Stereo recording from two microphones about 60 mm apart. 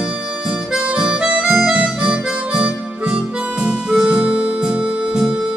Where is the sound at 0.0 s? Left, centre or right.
Centre.